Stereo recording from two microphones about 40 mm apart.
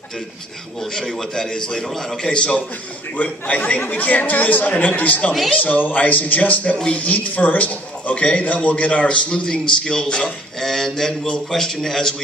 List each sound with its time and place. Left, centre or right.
0.9 s a man's voice: centre
3.2 s a man's voice: left; by 10.3 s centre
10.6 s a man's voice: centre